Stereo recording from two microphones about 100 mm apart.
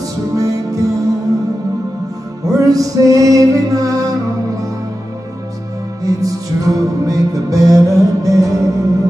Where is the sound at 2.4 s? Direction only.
35° right (ahead or behind).